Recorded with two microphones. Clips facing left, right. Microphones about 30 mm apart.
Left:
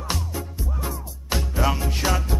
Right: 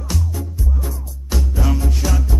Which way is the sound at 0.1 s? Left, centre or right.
Left.